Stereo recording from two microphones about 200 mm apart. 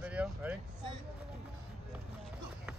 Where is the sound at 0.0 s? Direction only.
5° right (ahead or behind).